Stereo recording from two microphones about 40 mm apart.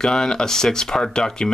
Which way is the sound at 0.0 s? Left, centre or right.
Centre.